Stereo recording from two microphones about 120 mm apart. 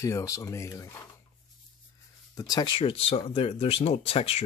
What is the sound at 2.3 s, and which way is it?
Speech, 30° left (ahead or behind).